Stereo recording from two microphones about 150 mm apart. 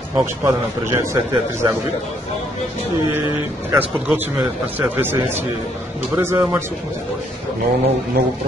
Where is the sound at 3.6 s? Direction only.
10° right (ahead or behind).